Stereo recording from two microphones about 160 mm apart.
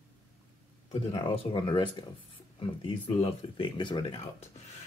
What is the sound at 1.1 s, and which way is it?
Speech, 30° left (ahead or behind).